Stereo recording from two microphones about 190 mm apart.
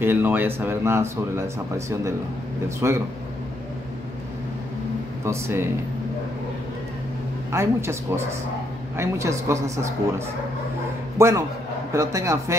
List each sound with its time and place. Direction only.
0.0 s speech: 10° right (ahead or behind)
2.8 s speech: 15° right (ahead or behind)
5.2 s speech: 15° right (ahead or behind)
7.5 s speech: 15° right (ahead or behind)